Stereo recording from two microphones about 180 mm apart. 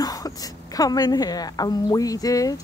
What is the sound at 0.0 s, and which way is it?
A woman's voice, 20° left (ahead or behind).